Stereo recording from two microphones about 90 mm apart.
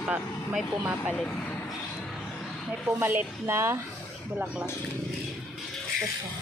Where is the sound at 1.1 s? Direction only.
10° left (ahead or behind).